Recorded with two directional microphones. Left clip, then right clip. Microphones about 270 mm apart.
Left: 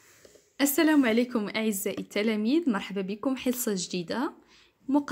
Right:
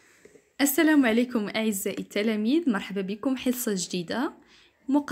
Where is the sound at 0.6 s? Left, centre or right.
Centre.